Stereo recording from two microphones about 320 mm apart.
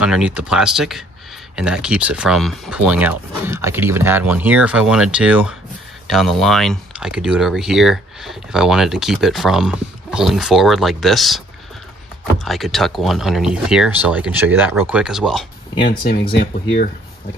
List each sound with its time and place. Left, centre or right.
0.0 s speech: centre
12.4 s speech: centre
16.3 s speech: left